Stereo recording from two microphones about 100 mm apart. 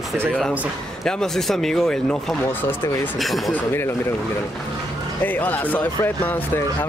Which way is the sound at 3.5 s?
20° left (ahead or behind).